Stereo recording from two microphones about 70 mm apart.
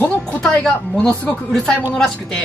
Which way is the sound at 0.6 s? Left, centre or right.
Centre.